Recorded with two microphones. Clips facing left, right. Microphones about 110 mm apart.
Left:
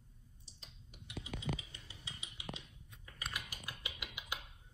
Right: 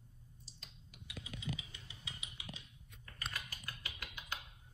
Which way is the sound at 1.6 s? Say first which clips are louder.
Right 1 dB; 35° left (ahead or behind).